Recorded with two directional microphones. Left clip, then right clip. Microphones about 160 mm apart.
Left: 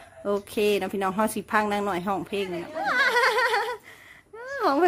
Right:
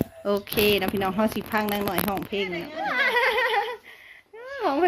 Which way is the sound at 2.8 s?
20° left (ahead or behind).